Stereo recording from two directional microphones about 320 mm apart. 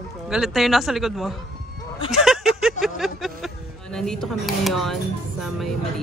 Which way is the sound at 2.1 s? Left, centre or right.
Centre.